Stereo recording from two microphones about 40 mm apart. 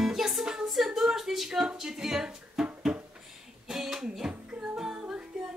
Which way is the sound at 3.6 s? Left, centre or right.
Centre.